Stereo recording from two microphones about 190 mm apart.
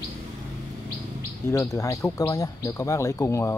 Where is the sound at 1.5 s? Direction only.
15° left (ahead or behind).